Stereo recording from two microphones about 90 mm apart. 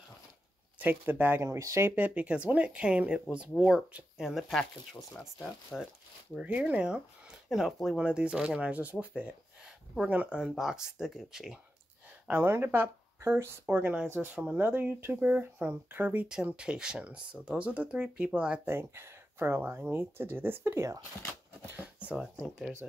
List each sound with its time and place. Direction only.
0.7 s speech: 20° right (ahead or behind)
2.0 s speech: 15° right (ahead or behind); by 5.9 s 5° left (ahead or behind)
6.3 s speech: 15° right (ahead or behind)
12.3 s speech: 25° right (ahead or behind)
16.3 s speech: 10° right (ahead or behind)
18.7 s speech: 25° right (ahead or behind)
21.6 s speech: 15° right (ahead or behind)